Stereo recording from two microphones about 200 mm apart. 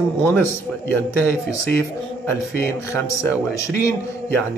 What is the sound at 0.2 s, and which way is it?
Speech, 10° left (ahead or behind).